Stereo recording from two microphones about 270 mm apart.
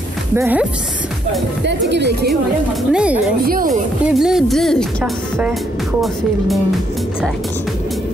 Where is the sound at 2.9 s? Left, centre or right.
Centre.